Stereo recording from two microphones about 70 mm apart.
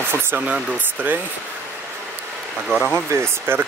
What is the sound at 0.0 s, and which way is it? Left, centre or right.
Speech, right.